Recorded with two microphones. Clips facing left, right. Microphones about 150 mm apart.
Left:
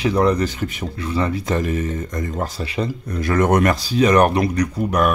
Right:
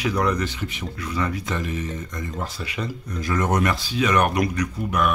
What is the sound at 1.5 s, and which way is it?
Speech, 45° left (ahead or behind).